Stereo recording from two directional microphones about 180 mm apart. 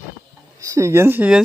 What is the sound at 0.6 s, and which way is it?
Speech, 15° right (ahead or behind).